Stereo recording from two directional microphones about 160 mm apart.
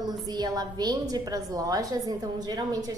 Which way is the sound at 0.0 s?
25° right (ahead or behind).